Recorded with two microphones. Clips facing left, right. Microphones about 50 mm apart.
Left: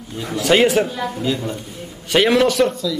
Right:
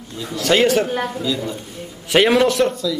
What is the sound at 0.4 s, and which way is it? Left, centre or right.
Speech, centre.